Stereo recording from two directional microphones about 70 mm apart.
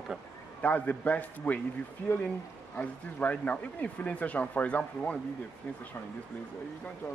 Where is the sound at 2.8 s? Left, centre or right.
Left.